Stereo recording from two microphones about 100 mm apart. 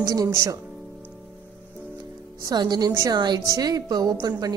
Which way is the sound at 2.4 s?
45° right (ahead or behind).